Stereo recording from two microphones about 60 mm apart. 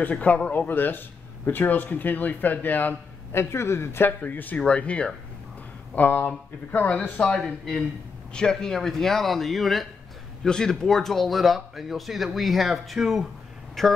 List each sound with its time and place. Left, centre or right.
0.1 s a man's voice: left
3.3 s speech: left
4.2 s a man's voice: left
7.3 s speech: centre
8.3 s speech: centre